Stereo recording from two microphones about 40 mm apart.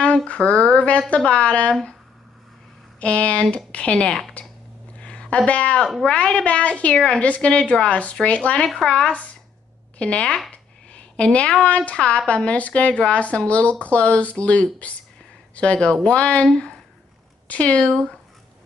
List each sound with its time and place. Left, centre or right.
0.3 s a woman's voice: left
1.7 s speech: centre
3.0 s a woman's voice: left
4.4 s typing: left
4.9 s a sound: left
6.0 s a woman's voice: left
6.4 s a woman's voice: left
8.8 s a woman's voice: centre
10.5 s a sound: left
11.6 s a woman's voice: left
12.4 s speech: left
16.5 s a sound: centre
17.5 s speech: left